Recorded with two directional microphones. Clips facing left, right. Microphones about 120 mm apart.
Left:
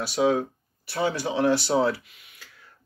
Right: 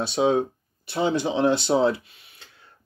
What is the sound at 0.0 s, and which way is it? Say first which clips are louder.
Speech: right 2 dB; 25° right (ahead or behind).